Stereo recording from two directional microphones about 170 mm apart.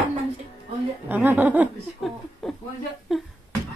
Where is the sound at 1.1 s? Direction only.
10° right (ahead or behind).